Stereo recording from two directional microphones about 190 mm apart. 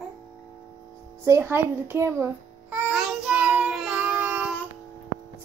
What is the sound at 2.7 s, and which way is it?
Child singing, 5° right (ahead or behind).